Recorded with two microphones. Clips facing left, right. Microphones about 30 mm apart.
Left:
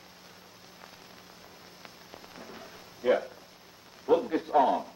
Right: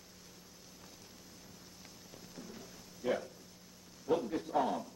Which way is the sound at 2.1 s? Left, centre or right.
Left.